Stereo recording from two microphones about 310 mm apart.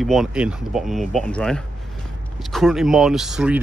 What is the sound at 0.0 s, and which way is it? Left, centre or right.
Speech, centre.